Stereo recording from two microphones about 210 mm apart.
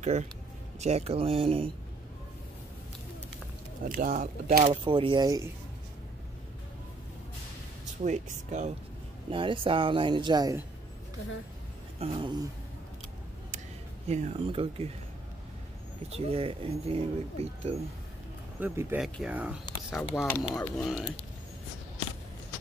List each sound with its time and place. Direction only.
0.0 s speech: 35° right (ahead or behind)
3.9 s speech: 40° right (ahead or behind)
4.8 s speech: 25° right (ahead or behind)
8.0 s speech: 35° right (ahead or behind)
9.3 s speech: 25° right (ahead or behind)
12.0 s speech: 25° right (ahead or behind)
14.0 s speech: 30° right (ahead or behind)
16.2 s speech: 25° right (ahead or behind)
18.6 s speech: 10° right (ahead or behind)